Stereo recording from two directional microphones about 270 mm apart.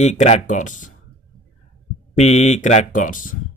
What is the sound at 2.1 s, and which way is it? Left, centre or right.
Speech, left.